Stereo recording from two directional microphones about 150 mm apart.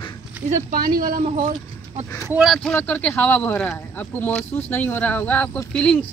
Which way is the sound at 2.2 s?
5° right (ahead or behind).